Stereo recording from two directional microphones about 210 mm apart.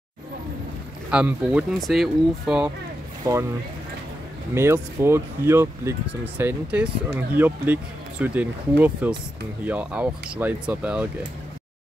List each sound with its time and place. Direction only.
1.1 s speech: 5° right (ahead or behind)
3.3 s speech: 15° right (ahead or behind)
4.6 s speech: 10° right (ahead or behind)